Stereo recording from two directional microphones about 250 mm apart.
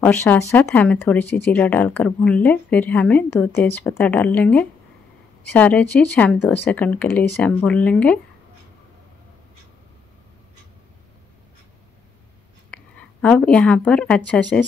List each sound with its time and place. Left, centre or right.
0.0 s a woman's voice: centre
12.7 s speech: centre